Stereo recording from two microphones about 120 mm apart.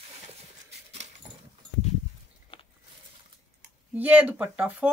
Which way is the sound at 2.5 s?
45° left (ahead or behind).